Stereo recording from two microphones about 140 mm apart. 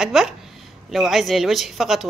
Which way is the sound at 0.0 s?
Centre (ahead or behind).